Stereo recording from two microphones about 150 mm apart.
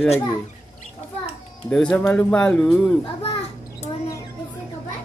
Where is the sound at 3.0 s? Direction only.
40° left (ahead or behind).